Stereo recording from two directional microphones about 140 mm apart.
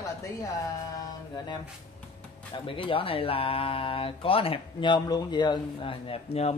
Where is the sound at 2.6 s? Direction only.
40° left (ahead or behind).